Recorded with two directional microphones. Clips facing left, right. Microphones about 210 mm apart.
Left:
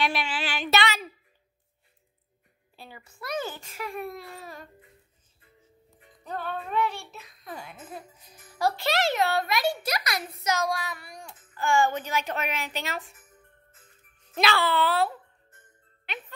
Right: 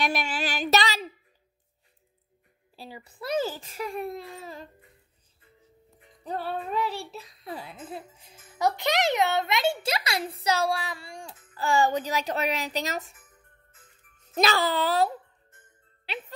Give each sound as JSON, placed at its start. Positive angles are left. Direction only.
{"t": 0.0, "sound": "speech", "side_deg": -45}
{"t": 2.7, "sound": "a child's voice", "side_deg": -35}
{"t": 6.2, "sound": "a child's voice", "side_deg": -35}
{"t": 14.3, "sound": "a child's voice", "side_deg": -40}